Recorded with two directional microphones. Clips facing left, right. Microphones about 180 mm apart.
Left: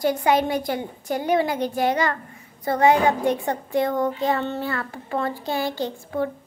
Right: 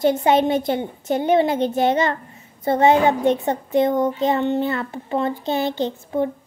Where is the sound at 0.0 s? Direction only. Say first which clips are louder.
Right 4 dB; 25° right (ahead or behind).